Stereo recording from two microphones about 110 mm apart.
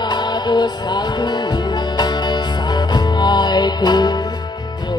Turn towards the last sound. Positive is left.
turn(degrees=40)  # may be behind; listen again after turning